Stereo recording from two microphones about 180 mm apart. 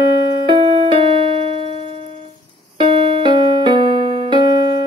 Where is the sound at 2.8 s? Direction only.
25° right (ahead or behind).